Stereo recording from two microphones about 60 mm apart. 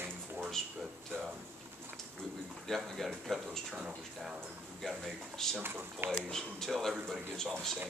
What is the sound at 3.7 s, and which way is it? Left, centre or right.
Speech, centre.